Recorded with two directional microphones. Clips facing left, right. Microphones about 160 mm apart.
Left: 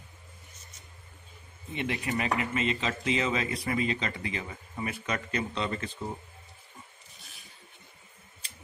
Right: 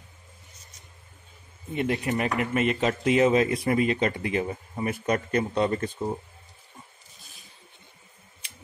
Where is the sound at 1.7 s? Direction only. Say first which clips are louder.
Right 5 dB; 45° right (ahead or behind).